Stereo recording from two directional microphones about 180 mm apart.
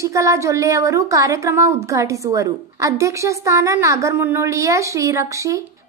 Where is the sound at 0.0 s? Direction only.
15° right (ahead or behind).